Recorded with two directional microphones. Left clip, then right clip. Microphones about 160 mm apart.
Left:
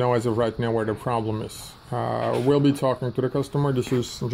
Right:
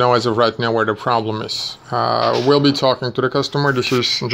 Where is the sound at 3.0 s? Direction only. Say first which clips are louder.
Right 7 dB; 40° right (ahead or behind).